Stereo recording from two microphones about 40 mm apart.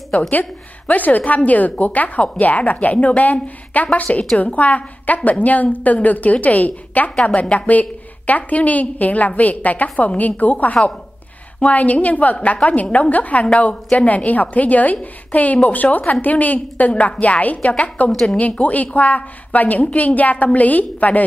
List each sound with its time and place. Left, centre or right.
0.3 s a woman's voice: left
18.1 s speech: centre
18.6 s a woman's voice: left